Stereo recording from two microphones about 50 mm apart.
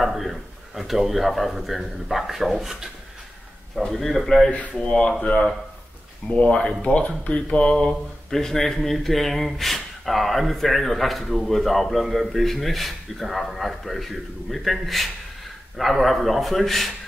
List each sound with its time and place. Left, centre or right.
0.0 s speech: centre
3.9 s speech: centre
4.5 s speech: left; by 16.9 s centre